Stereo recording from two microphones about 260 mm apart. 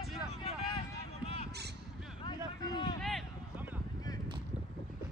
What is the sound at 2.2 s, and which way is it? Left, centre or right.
Vehicle, centre.